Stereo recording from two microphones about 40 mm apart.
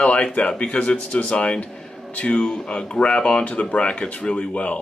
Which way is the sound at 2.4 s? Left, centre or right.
Centre.